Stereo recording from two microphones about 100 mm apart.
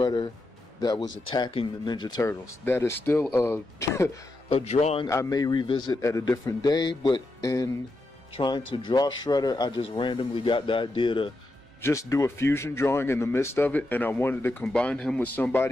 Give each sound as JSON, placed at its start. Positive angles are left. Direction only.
{"t": 0.0, "sound": "speech", "side_deg": 55}
{"t": 2.2, "sound": "speech", "side_deg": 25}
{"t": 4.5, "sound": "a man's voice", "side_deg": 80}
{"t": 5.1, "sound": "a man's voice", "side_deg": 35}
{"t": 7.4, "sound": "a man's voice", "side_deg": 35}
{"t": 8.4, "sound": "speech", "side_deg": 50}
{"t": 9.8, "sound": "speech", "side_deg": 60}
{"t": 11.8, "sound": "speech", "side_deg": 30}
{"t": 14.6, "sound": "speech", "side_deg": 10}